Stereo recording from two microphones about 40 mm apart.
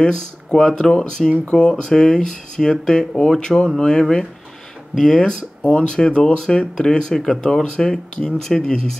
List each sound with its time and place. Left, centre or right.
0.1 s speech: centre
1.4 s speech: left
1.7 s speech: centre
5.1 s speech: centre
5.7 s speech: left